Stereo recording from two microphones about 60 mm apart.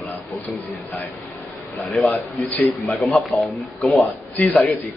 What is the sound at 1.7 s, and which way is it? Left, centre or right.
Speech, centre.